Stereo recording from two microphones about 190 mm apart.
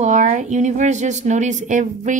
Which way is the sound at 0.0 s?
40° right (ahead or behind).